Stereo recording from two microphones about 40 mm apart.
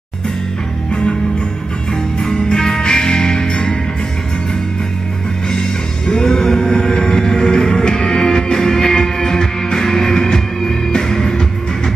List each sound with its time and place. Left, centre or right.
2.1 s music: centre
5.5 s music: centre